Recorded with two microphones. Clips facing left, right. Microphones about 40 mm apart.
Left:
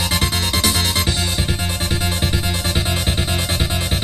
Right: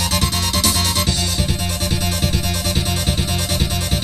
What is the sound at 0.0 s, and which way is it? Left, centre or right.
Music, left.